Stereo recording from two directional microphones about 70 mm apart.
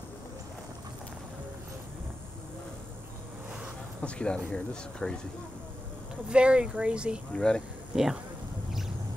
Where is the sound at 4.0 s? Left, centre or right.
Centre.